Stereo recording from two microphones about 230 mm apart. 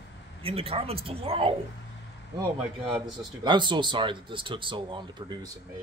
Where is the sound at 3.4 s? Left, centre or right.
Centre.